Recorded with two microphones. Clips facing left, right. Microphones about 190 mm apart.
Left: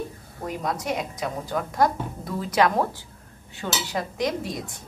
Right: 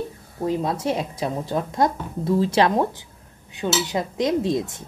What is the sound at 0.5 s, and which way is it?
A woman's voice, 25° right (ahead or behind).